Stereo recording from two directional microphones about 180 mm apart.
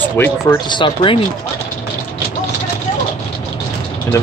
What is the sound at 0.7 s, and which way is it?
Speech, 25° left (ahead or behind).